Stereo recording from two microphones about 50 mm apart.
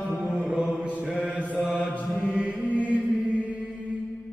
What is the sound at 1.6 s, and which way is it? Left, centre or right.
Mantra, centre.